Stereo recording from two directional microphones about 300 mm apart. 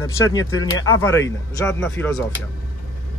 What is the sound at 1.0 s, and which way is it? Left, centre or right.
Speech, centre.